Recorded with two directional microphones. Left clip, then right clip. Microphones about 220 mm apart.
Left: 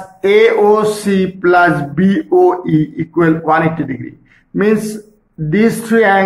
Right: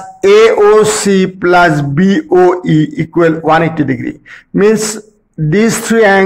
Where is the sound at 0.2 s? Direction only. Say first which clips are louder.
Right 4 dB; 45° right (ahead or behind).